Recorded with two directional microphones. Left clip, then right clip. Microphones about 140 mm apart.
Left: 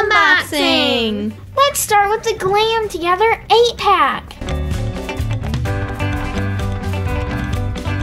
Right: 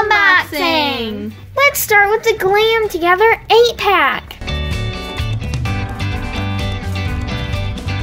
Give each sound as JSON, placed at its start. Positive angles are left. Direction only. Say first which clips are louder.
{"t": 0.1, "sound": "music", "louder": "right 1 dB", "side_deg": -40}
{"t": 0.7, "sound": "a sound", "louder": "even", "side_deg": -40}
{"t": 1.6, "sound": "a child's voice", "louder": "right 2 dB", "side_deg": -40}